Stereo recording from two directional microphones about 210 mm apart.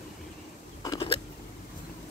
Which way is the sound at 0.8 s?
20° left (ahead or behind).